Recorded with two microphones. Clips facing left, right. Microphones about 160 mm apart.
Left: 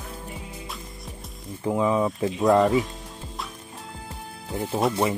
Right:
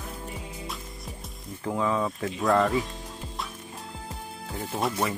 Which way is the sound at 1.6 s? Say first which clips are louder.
Left 4 dB; 20° left (ahead or behind).